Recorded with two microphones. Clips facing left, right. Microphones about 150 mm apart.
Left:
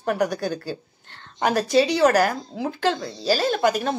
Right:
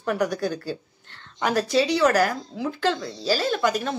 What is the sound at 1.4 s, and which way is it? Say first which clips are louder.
Speech: left 3 dB; 45° left (ahead or behind).